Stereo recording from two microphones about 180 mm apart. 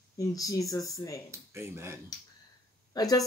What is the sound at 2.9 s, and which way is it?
Speech, 20° left (ahead or behind).